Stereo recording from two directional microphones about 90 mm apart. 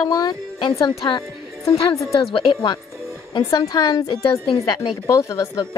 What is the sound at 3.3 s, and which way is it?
Speech, 45° left (ahead or behind).